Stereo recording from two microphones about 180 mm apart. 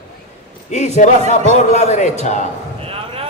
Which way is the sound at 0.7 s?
40° left (ahead or behind).